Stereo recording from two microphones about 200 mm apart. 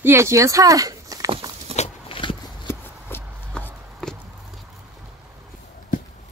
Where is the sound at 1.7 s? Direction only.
30° left (ahead or behind).